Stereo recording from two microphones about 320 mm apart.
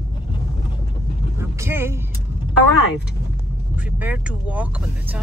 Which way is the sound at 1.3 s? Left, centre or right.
Centre.